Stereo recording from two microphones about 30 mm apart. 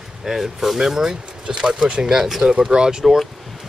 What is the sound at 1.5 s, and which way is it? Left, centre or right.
Speech, right.